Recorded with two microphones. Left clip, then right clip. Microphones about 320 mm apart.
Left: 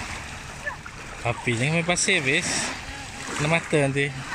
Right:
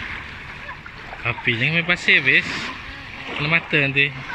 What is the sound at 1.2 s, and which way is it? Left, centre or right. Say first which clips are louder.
Speech: right 5 dB; centre.